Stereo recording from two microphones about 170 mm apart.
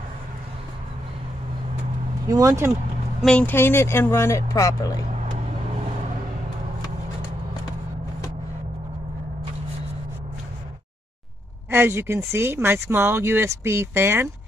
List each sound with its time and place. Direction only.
2.2 s speech: 20° right (ahead or behind)
3.2 s speech: 5° left (ahead or behind)
11.7 s speech: 15° right (ahead or behind)